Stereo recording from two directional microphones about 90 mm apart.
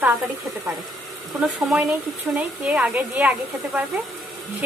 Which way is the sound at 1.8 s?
15° right (ahead or behind).